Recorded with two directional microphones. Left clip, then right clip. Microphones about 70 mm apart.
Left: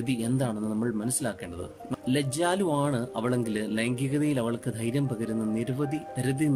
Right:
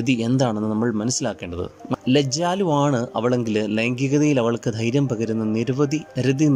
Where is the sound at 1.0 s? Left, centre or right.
Centre.